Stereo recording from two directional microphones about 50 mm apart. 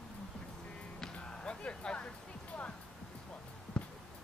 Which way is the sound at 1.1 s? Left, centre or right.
Centre.